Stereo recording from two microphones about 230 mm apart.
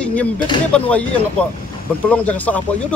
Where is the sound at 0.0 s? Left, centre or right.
Centre.